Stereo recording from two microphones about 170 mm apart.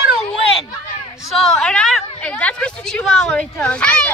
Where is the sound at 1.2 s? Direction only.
Centre (ahead or behind).